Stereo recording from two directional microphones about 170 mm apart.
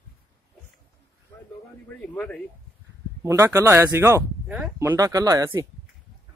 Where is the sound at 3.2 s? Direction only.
15° right (ahead or behind).